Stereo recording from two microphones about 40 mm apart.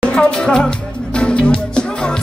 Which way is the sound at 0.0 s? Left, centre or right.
Centre.